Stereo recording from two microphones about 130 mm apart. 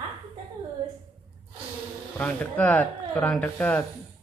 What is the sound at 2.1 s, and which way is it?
Speech, 10° left (ahead or behind).